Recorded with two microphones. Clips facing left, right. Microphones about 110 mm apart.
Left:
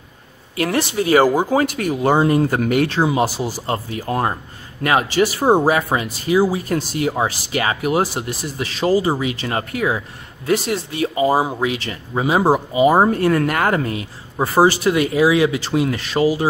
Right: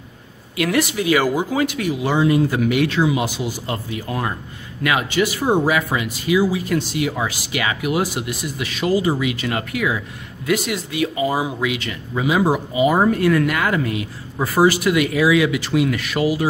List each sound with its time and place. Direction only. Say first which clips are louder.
0.6 s speech: even; 30° left (ahead or behind)